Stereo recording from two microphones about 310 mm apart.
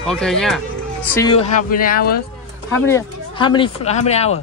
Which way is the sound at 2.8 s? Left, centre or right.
Centre.